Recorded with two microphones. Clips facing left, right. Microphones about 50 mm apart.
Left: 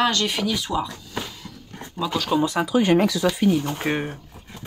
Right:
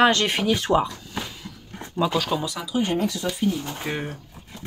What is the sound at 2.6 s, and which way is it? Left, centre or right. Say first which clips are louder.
Speech: left 5 dB; left.